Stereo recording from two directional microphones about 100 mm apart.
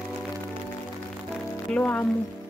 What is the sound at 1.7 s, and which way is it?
Speech, 15° left (ahead or behind).